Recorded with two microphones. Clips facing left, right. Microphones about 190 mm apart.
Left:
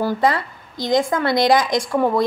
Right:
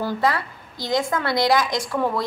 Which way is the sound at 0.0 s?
15° left (ahead or behind).